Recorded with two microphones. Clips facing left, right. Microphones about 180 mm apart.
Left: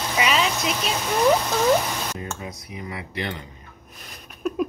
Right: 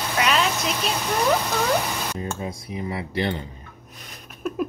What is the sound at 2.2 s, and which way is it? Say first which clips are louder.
Speech: right 4 dB; 30° right (ahead or behind).